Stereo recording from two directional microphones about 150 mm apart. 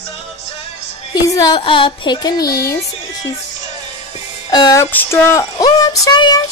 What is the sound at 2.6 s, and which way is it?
Speech, 20° left (ahead or behind).